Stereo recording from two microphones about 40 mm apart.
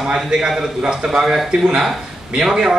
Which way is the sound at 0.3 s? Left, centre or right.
Right.